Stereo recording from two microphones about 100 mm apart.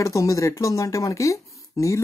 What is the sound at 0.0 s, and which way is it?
Speech, 35° left (ahead or behind).